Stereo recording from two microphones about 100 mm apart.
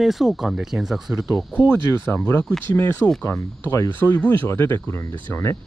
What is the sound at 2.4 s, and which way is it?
Speech, 10° left (ahead or behind).